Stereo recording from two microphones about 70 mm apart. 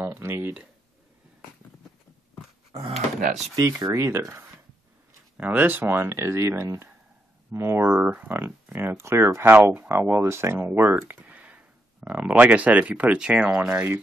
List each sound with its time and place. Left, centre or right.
0.0 s speech: right
2.9 s speech: centre
3.9 s speech: right
5.4 s speech: right
8.0 s speech: centre
8.3 s speech: right
8.9 s speech: right; by 13.8 s centre